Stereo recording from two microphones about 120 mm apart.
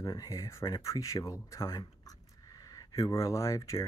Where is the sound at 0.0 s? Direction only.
30° left (ahead or behind).